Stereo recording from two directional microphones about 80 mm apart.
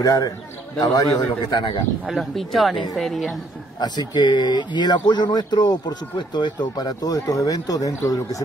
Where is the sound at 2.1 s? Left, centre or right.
Centre.